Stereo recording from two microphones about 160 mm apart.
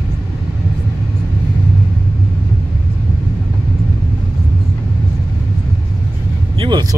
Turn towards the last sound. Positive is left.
turn(degrees=-30)  # may be behind; listen again after turning